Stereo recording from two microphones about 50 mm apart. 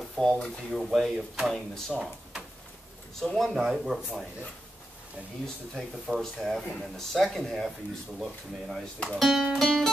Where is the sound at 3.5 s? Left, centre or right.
Centre.